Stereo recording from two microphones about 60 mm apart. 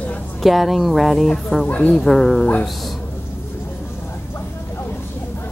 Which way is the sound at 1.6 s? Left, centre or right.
Left.